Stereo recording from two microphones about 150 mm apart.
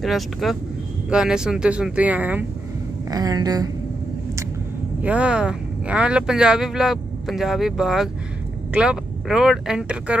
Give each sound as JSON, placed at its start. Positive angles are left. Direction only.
{"t": 0.0, "sound": "speech", "side_deg": 0}
{"t": 3.1, "sound": "speech", "side_deg": -25}
{"t": 5.0, "sound": "speech", "side_deg": -5}